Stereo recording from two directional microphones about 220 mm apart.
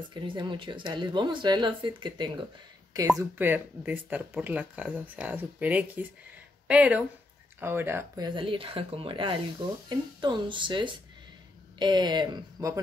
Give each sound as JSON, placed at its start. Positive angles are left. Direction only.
{"t": 0.1, "sound": "speech", "side_deg": -20}
{"t": 3.2, "sound": "speech", "side_deg": -10}
{"t": 8.4, "sound": "speech", "side_deg": -25}